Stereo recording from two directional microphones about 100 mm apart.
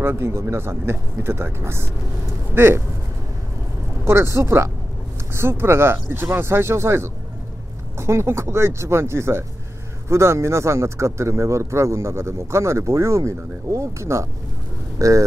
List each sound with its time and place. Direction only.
0.0 s speech: 25° right (ahead or behind)
4.0 s speech: 25° right (ahead or behind)